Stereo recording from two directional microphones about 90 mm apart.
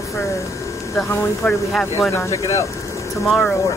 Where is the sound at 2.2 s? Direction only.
35° left (ahead or behind).